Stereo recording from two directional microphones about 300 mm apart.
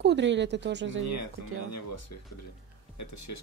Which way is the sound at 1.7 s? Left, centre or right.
Left.